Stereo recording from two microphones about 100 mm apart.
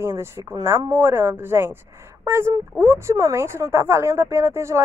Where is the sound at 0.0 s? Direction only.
25° right (ahead or behind).